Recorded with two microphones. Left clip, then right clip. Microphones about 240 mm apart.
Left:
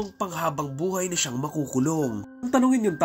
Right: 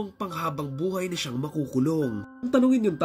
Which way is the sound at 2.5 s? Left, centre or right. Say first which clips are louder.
Even; centre.